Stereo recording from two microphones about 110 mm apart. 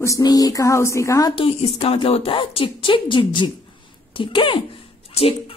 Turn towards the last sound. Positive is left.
turn(degrees=60)  # may be behind; listen again after turning